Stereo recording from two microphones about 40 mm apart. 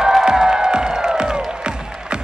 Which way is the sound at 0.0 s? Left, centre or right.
Centre.